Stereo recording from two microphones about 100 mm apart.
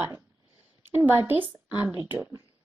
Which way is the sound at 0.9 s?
20° right (ahead or behind).